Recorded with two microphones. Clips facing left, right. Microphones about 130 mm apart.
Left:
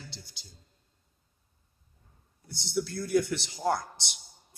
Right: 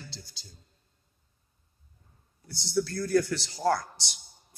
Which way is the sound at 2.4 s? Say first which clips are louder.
Right 3 dB; 20° left (ahead or behind).